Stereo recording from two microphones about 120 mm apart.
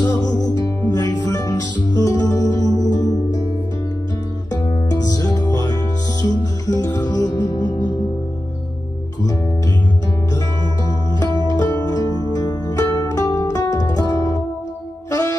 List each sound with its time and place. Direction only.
0.0 s music: 35° left (ahead or behind)
4.5 s music: 30° left (ahead or behind)
11.1 s music: 35° left (ahead or behind)